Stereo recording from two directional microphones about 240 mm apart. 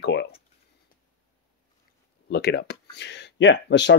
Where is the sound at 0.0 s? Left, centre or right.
Left.